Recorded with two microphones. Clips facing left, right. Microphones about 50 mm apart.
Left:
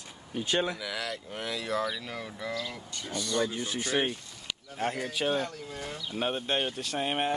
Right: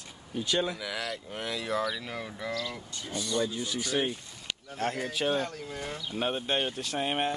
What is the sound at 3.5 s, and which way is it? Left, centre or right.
Speech, left.